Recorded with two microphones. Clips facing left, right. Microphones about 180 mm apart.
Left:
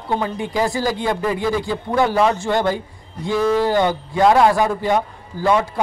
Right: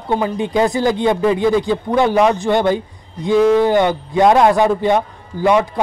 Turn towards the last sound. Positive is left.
turn(degrees=-15)  # may be behind; listen again after turning